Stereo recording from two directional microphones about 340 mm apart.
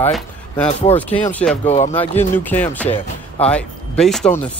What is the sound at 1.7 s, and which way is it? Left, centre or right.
Speech, centre.